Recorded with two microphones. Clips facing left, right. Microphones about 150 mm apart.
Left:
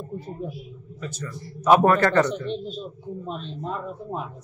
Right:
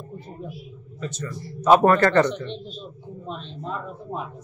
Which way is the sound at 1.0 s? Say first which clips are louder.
Right 3 dB; 10° left (ahead or behind).